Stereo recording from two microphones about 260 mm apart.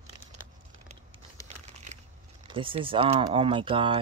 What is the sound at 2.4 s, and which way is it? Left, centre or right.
Speech, centre.